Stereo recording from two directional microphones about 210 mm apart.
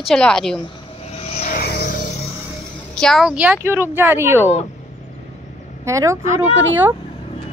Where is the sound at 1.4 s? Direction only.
45° left (ahead or behind).